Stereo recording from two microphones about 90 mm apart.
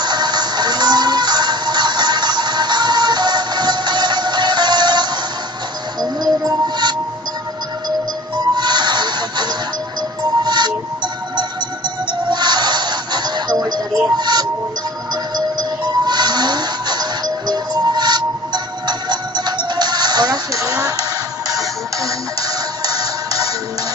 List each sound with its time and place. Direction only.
0.0 s music: 55° right (ahead or behind)
8.5 s music: 55° right (ahead or behind)
12.1 s music: 55° right (ahead or behind)
16.1 s music: 50° right (ahead or behind)
20.5 s a sound: 40° right (ahead or behind)
21.5 s music: 40° right (ahead or behind)